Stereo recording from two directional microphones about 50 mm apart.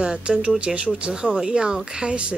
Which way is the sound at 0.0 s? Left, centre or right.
Centre.